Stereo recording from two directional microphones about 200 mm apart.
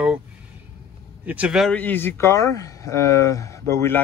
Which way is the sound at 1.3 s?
5° right (ahead or behind).